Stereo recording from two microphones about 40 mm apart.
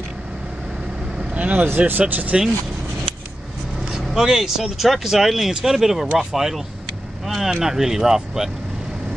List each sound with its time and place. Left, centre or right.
1.3 s speech: right
4.1 s speech: centre